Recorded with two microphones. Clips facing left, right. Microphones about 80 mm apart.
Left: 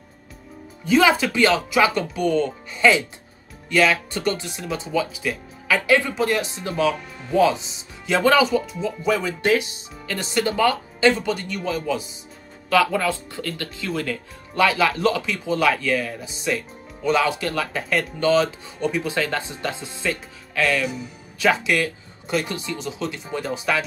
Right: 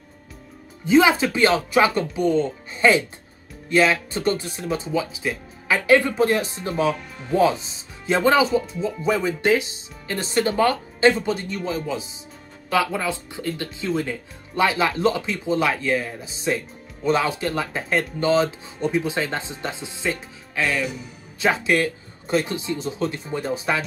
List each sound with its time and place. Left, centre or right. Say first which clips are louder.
0.8 s speech: right 1 dB; right
5.9 s speech: right 4 dB; right
20.6 s speech: left 2 dB; centre
21.4 s speech: even; right